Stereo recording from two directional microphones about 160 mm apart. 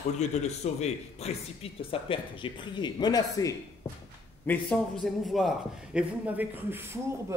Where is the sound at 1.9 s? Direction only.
35° left (ahead or behind).